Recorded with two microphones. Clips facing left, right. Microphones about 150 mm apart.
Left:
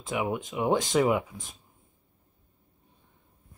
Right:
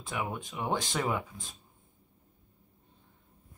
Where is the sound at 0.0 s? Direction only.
20° left (ahead or behind).